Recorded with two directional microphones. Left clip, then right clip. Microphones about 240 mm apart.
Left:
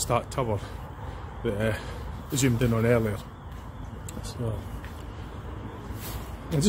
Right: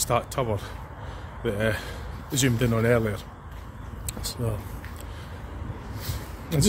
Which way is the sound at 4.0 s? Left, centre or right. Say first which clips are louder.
Right 7 dB; centre.